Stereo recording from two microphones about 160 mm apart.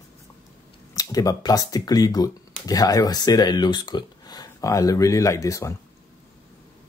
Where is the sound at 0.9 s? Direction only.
20° left (ahead or behind).